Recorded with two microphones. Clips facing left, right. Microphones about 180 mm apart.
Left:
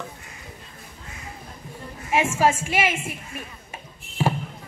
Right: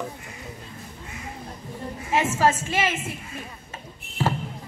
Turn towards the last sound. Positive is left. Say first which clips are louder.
# left 1 dB
turn(degrees=15)  # may be behind; listen again after turning